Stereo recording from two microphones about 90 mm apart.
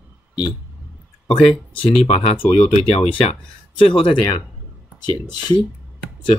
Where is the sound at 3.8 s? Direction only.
70° left (ahead or behind).